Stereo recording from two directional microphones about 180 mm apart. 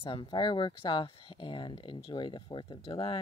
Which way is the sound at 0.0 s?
25° left (ahead or behind).